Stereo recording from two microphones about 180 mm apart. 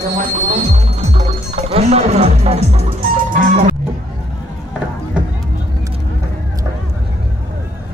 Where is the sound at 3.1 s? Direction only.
50° right (ahead or behind).